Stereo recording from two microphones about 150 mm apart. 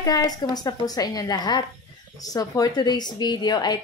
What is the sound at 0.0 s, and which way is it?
A woman's voice, 25° left (ahead or behind).